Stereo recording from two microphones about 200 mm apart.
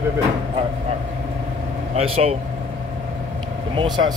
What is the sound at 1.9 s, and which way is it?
Speech, 30° right (ahead or behind).